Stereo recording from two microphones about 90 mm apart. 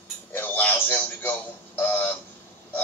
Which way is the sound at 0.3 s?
20° left (ahead or behind).